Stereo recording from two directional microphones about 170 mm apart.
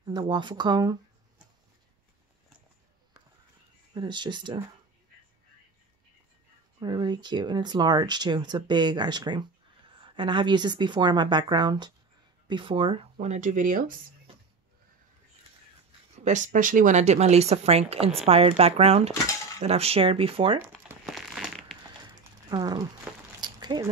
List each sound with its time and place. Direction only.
0.0 s speech: 25° right (ahead or behind)
3.9 s speech: 25° right (ahead or behind)
6.8 s speech: 25° right (ahead or behind); by 13.9 s 50° right (ahead or behind)
16.3 s speech: 50° right (ahead or behind); by 20.6 s 30° right (ahead or behind)
20.6 s crumpling: 15° right (ahead or behind)
21.0 s crumpling: centre (ahead or behind)
21.8 s a sound: 20° right (ahead or behind)
23.1 s a sound: 5° right (ahead or behind)
23.4 s a sound: 25° right (ahead or behind)